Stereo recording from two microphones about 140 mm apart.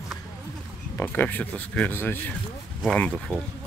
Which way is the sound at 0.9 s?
10° left (ahead or behind).